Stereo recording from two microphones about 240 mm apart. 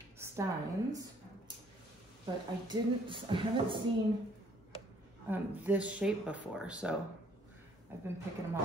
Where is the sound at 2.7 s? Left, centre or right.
Centre.